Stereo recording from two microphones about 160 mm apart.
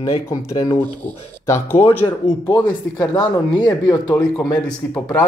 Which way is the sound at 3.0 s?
10° left (ahead or behind).